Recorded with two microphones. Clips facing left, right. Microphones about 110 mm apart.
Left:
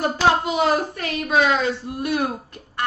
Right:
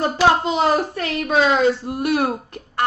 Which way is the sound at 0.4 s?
30° right (ahead or behind).